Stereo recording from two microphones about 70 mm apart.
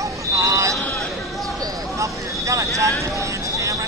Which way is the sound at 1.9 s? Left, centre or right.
Right.